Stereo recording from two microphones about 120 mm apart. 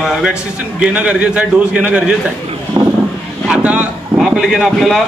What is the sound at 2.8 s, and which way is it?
Vehicle, 40° right (ahead or behind).